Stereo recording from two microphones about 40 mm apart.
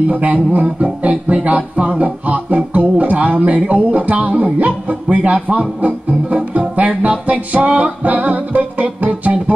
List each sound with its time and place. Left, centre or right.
0.1 s music: right